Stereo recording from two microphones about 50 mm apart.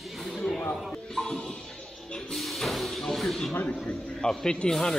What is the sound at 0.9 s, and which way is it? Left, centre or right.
Speech, centre.